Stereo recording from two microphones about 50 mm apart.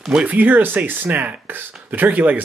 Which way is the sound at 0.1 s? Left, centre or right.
Right.